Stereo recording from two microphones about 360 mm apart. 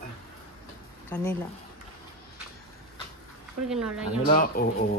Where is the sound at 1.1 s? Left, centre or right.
Centre.